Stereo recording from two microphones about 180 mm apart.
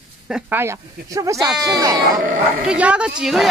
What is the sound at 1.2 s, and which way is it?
Speech, 20° right (ahead or behind).